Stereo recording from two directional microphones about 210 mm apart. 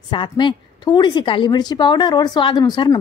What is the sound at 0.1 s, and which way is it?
A woman's voice, 20° left (ahead or behind).